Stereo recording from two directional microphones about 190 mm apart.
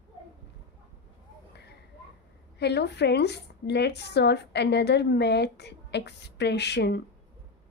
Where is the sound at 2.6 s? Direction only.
60° left (ahead or behind).